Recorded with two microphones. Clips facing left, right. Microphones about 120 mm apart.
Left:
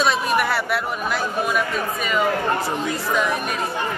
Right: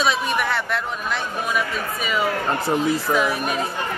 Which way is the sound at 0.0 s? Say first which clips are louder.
Left 2 dB; centre (ahead or behind).